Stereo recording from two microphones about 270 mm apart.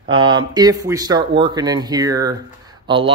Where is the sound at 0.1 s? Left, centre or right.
Centre.